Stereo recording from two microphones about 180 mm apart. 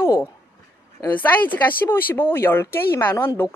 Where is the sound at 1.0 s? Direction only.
10° left (ahead or behind).